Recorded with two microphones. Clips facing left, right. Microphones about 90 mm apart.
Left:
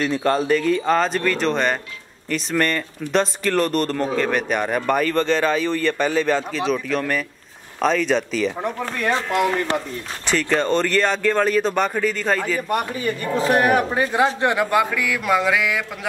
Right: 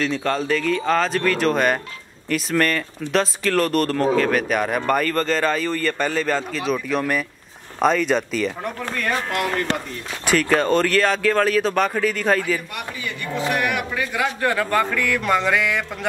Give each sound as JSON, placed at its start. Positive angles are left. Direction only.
{"t": 0.0, "sound": "speech", "side_deg": 10}
{"t": 8.5, "sound": "a man's voice", "side_deg": 15}
{"t": 10.2, "sound": "speech", "side_deg": -5}
{"t": 12.6, "sound": "a man's voice", "side_deg": 40}